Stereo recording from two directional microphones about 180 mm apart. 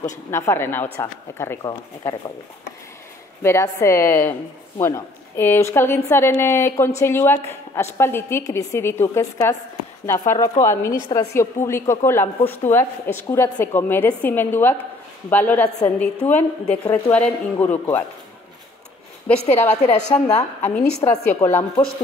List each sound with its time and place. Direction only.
0.3 s a woman's voice: 15° left (ahead or behind)
3.4 s a woman's voice: 15° left (ahead or behind)
19.7 s a woman's voice: 40° left (ahead or behind)
21.4 s a woman's voice: 10° left (ahead or behind)